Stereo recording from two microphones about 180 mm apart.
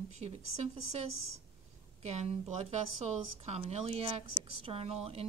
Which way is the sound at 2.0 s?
35° right (ahead or behind).